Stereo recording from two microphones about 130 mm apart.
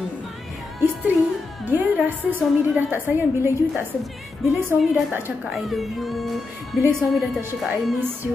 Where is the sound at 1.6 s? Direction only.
15° right (ahead or behind).